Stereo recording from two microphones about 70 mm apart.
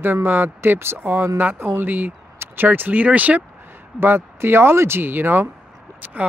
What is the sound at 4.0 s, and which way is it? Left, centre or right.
Speech, right.